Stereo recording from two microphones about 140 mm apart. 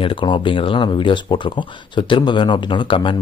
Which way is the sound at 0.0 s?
35° left (ahead or behind).